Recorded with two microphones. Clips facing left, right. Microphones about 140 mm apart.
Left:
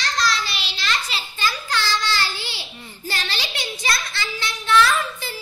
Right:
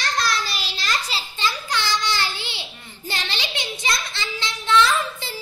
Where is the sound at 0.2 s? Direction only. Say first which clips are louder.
Left 3 dB; 45° right (ahead or behind).